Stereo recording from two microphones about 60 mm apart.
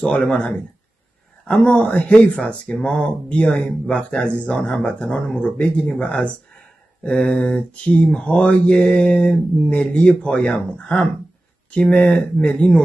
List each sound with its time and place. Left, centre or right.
0.0 s mantra: centre
7.0 s speech: centre
7.7 s mantra: centre
11.8 s speech: centre